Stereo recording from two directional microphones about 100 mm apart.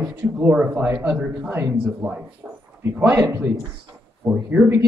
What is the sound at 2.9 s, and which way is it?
Speech, 25° right (ahead or behind).